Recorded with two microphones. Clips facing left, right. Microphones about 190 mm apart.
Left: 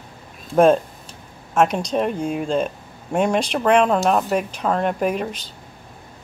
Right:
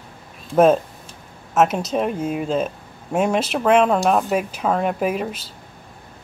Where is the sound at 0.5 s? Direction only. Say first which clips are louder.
Even; 5° right (ahead or behind).